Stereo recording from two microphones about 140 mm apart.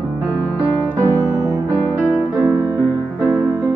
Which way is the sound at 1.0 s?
25° right (ahead or behind).